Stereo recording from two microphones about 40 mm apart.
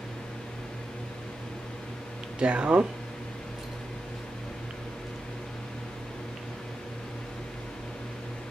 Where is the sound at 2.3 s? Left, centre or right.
Right.